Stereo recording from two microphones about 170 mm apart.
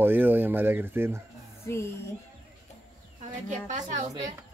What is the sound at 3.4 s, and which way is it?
Speech, 45° right (ahead or behind).